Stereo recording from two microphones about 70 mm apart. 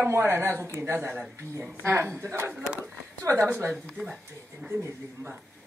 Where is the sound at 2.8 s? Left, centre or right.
Right.